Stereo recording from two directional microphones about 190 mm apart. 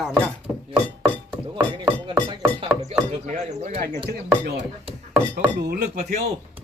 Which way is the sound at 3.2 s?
40° right (ahead or behind).